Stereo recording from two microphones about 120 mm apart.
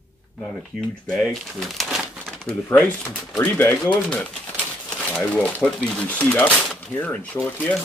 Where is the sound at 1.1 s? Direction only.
5° left (ahead or behind).